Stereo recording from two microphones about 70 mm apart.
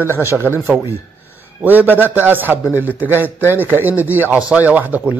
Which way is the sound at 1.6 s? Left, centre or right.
Right.